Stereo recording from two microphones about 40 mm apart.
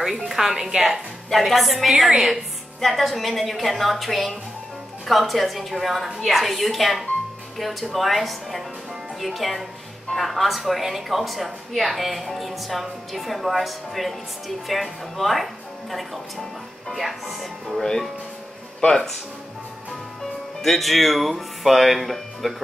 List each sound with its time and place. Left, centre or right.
0.0 s a woman's voice: centre
1.3 s a woman's voice: centre
18.9 s speech: centre
20.2 s speech: centre